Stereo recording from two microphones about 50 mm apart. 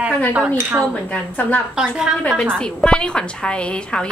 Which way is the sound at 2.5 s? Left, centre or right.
Centre.